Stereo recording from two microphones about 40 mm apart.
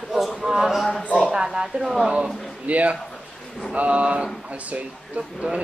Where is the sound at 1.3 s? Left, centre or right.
Centre.